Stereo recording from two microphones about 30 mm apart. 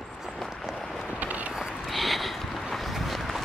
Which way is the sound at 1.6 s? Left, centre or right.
Centre.